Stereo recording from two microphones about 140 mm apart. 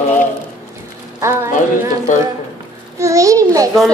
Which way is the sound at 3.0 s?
20° right (ahead or behind).